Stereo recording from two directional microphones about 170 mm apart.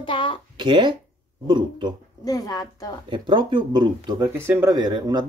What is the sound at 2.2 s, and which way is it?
Speech, 20° left (ahead or behind).